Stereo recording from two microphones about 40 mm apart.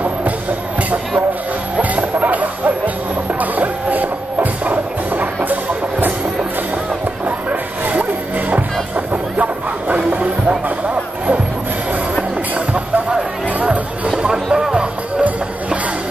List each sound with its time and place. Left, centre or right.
1.8 s music: right
7.9 s music: right
12.2 s music: right
14.1 s music: centre